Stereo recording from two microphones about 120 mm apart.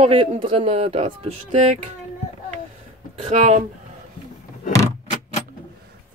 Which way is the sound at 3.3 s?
70° right (ahead or behind).